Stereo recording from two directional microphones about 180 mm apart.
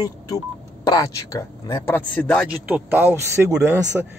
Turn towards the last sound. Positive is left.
turn(degrees=-15)  # may be behind; listen again after turning